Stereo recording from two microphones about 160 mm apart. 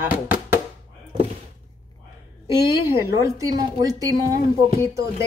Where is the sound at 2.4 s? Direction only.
15° right (ahead or behind).